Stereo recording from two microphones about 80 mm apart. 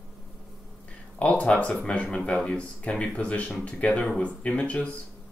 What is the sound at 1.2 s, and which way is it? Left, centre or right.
Speech, centre.